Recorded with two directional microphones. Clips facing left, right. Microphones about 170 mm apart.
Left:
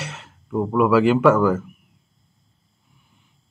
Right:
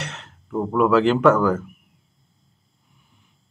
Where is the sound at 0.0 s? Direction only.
5° left (ahead or behind).